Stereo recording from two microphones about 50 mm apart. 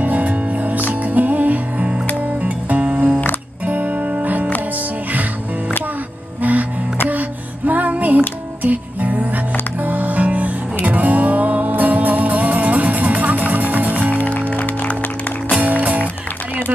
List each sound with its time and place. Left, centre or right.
0.0 s music: right
6.4 s music: right
14.1 s music: left